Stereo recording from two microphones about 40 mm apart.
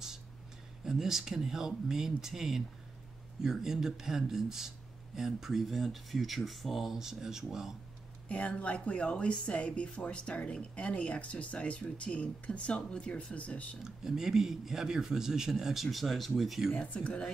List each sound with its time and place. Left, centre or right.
0.8 s speech: centre
8.3 s speech: left
13.8 s speech: centre
16.7 s speech: left